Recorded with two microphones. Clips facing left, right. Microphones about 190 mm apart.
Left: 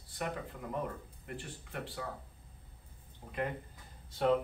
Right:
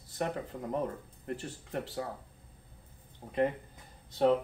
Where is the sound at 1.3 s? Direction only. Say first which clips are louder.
Right 3 dB; 40° right (ahead or behind).